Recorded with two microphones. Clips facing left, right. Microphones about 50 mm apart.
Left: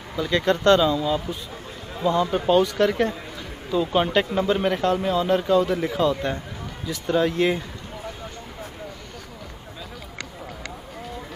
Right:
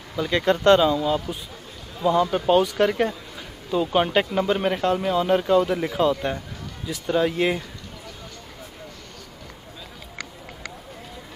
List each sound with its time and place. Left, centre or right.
0.2 s a man's voice: centre
2.3 s a man's voice: centre